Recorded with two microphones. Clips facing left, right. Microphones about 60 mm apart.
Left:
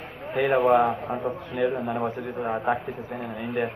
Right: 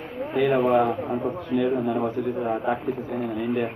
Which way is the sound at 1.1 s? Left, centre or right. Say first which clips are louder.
Right 4 dB; left.